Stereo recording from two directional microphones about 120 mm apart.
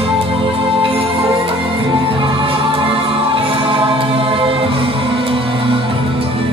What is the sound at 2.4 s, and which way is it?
Music, 45° right (ahead or behind).